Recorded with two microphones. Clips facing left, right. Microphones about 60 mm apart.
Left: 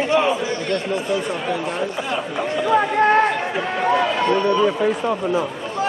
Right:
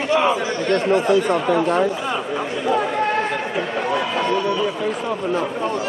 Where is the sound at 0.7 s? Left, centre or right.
Right.